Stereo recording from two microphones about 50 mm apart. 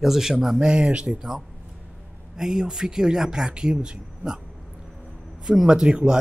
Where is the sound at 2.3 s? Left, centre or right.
Centre.